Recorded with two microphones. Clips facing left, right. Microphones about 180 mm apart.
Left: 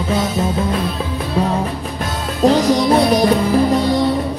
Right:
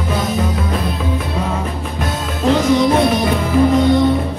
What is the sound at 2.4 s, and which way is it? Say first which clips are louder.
Music: even; 35° left (ahead or behind).